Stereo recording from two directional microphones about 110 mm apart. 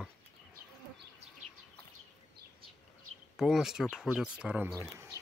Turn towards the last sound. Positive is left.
turn(degrees=-10)  # may be behind; listen again after turning